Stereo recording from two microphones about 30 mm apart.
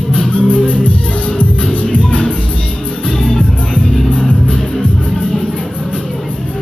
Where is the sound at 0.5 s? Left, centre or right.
Left.